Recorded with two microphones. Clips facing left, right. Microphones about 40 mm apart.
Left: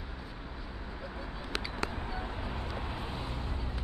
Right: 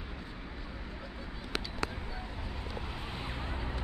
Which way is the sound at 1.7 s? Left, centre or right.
Left.